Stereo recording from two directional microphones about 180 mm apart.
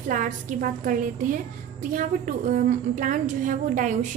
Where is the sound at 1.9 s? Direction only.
50° right (ahead or behind).